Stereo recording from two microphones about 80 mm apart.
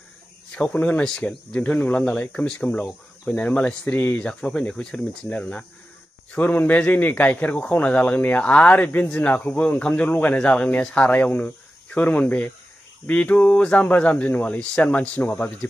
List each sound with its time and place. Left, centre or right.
0.6 s speech: centre